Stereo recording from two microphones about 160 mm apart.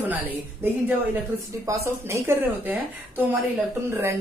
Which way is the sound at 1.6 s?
20° right (ahead or behind).